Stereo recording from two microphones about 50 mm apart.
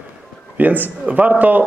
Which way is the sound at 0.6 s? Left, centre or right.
Right.